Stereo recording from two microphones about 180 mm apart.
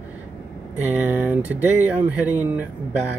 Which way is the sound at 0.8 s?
10° right (ahead or behind).